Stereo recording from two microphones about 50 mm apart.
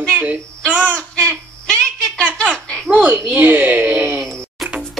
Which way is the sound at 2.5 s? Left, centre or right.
Centre.